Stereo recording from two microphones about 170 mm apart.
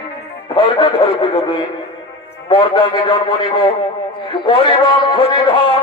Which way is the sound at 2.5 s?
30° left (ahead or behind).